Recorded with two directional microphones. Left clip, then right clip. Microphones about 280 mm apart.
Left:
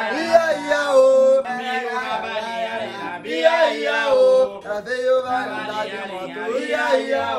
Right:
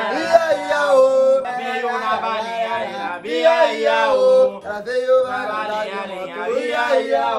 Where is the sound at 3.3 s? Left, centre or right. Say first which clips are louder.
Right 2 dB; right.